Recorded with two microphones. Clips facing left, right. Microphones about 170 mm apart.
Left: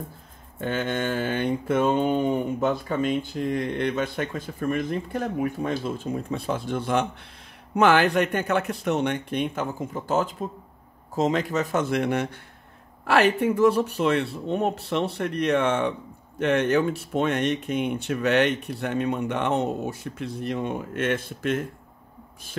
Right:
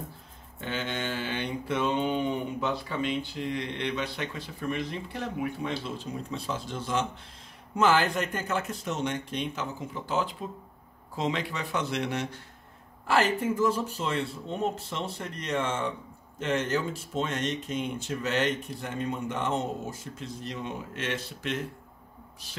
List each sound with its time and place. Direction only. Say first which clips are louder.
0.6 s mantra: left 7 dB; 50° left (ahead or behind)
7.7 s speech: left 5 dB; 65° left (ahead or behind); by 10.3 s 45° left (ahead or behind)
11.1 s mantra: left 7 dB; 45° left (ahead or behind)
13.0 s speech: left 5 dB; 65° left (ahead or behind); by 21.6 s 50° left (ahead or behind)
22.5 s mantra: left 9 dB; 50° left (ahead or behind)